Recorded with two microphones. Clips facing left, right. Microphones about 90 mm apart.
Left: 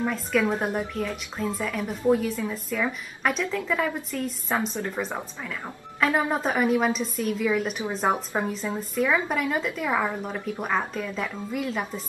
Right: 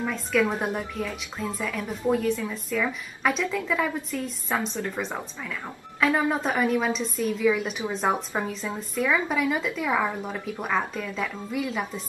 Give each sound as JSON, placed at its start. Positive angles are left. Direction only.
{"t": 0.0, "sound": "a woman's voice", "side_deg": 5}
{"t": 4.6, "sound": "a woman's voice", "side_deg": 10}